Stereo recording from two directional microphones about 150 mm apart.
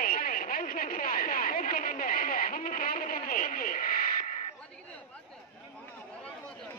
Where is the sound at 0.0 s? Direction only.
70° left (ahead or behind).